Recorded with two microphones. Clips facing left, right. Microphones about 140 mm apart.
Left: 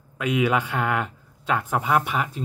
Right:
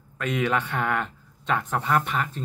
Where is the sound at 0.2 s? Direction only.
10° left (ahead or behind).